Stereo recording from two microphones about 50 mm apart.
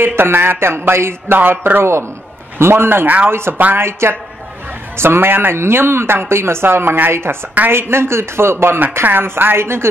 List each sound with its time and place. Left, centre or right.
0.0 s speech: right
1.4 s speech: right
3.5 s speech: right
3.8 s speech: right